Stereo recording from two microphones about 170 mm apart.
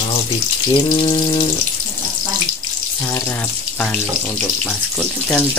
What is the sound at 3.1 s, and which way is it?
Speech, 10° left (ahead or behind).